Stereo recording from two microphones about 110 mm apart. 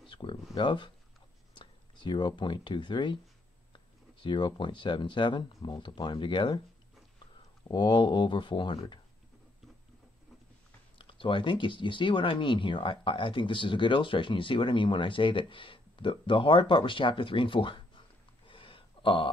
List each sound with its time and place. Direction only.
0.0 s a sound: 50° left (ahead or behind)
0.6 s speech: 45° left (ahead or behind)
7.6 s speech: 45° left (ahead or behind)
11.0 s speech: 50° left (ahead or behind)